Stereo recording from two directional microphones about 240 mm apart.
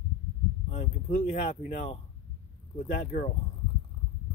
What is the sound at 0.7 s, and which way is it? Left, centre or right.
Speech, left.